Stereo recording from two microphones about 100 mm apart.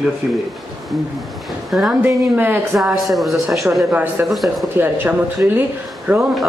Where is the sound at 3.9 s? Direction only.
15° right (ahead or behind).